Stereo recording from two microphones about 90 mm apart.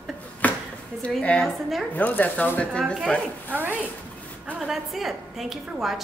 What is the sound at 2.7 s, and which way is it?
Speech, 5° left (ahead or behind).